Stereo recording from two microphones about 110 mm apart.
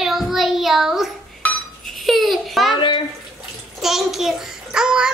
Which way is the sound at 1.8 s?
Centre (ahead or behind).